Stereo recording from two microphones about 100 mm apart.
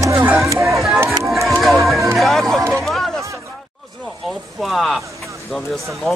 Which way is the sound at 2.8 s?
5° left (ahead or behind).